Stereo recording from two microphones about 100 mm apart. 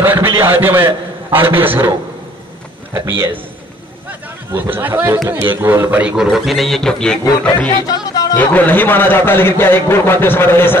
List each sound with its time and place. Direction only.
0.0 s a man's voice: 20° right (ahead or behind)
2.9 s a man's voice: 25° right (ahead or behind)
4.5 s a man's voice: 20° right (ahead or behind); by 7.2 s 5° left (ahead or behind)
7.9 s speech: 40° left (ahead or behind)
8.4 s a man's voice: 20° left (ahead or behind)